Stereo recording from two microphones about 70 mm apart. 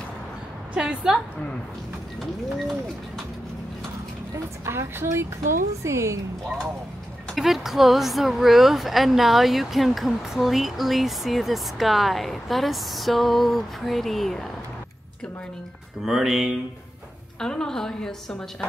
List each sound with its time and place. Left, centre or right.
0.7 s a woman's voice: centre
2.5 s speech: centre
4.6 s a woman's voice: right
7.3 s speech: centre
16.0 s speech: centre
17.4 s a woman's voice: centre